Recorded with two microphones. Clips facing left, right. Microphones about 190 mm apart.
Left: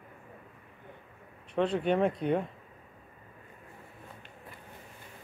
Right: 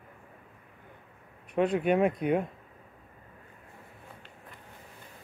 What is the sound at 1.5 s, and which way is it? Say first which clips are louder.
Speech: right 2 dB; 10° right (ahead or behind).